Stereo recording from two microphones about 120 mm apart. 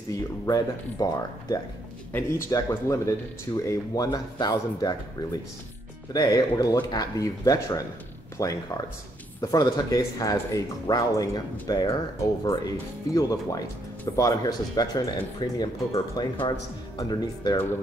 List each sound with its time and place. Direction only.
0.1 s speech: 30° left (ahead or behind)